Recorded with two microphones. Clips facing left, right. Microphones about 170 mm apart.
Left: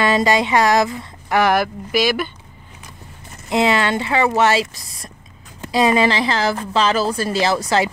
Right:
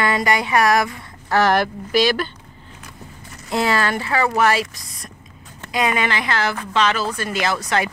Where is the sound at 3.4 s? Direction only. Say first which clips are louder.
Left 3 dB; 20° left (ahead or behind).